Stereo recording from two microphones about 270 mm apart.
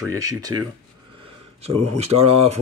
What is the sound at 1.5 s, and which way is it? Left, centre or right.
Speech, right.